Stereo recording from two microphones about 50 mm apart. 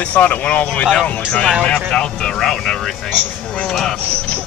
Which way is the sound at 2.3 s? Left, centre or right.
Centre.